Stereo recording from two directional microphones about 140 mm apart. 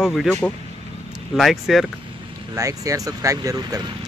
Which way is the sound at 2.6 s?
25° right (ahead or behind).